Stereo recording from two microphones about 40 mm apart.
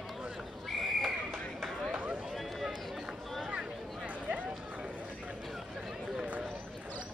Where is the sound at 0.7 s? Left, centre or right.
Centre.